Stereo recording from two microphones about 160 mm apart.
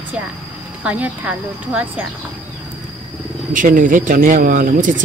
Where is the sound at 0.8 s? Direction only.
10° right (ahead or behind).